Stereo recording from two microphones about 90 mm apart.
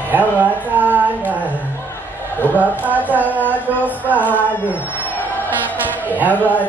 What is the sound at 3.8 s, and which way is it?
Speech, 20° right (ahead or behind).